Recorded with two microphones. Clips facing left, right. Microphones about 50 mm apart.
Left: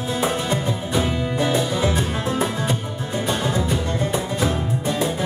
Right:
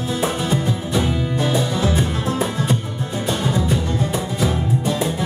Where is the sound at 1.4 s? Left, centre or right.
Centre.